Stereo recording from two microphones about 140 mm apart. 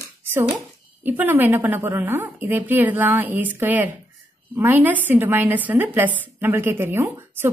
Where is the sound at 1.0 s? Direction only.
15° right (ahead or behind).